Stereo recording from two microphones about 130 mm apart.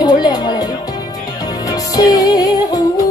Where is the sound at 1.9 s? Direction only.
30° left (ahead or behind).